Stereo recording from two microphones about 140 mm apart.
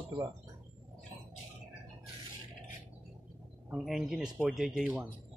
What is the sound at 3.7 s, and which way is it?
Speech, centre (ahead or behind).